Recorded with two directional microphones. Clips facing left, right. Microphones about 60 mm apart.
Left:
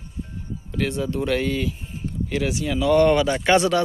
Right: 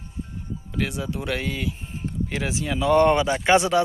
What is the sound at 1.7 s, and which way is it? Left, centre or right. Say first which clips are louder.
Speech: even; right.